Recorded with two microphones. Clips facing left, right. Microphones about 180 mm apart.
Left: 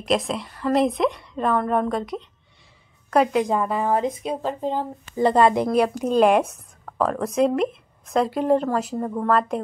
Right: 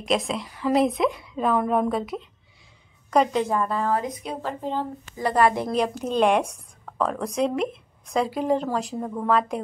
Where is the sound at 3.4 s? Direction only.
15° left (ahead or behind).